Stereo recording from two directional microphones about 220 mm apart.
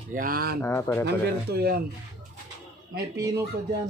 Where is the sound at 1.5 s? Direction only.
45° right (ahead or behind).